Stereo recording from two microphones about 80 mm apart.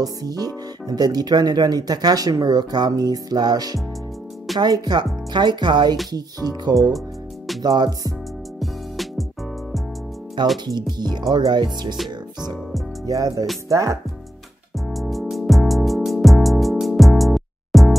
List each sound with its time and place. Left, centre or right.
0.0 s music: right
0.8 s speech: right
2.9 s music: right
4.6 s speech: right
5.3 s speech: right
6.1 s music: right
7.6 s speech: right
10.4 s speech: right
13.0 s music: right
13.7 s speech: right
14.9 s music: centre